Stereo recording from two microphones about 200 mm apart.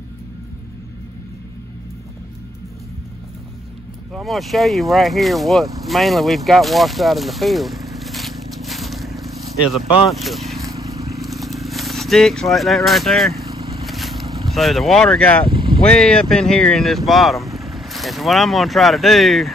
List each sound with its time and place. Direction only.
4.1 s speech: centre (ahead or behind)
10.7 s vehicle: 15° right (ahead or behind)
11.2 s a sound: centre (ahead or behind)
13.5 s vehicle: 30° right (ahead or behind)
13.8 s vehicle: centre (ahead or behind)
14.2 s boat: 20° right (ahead or behind)
14.5 s speech: centre (ahead or behind)
15.5 s vehicle: 25° right (ahead or behind)
15.8 s speech: 5° left (ahead or behind)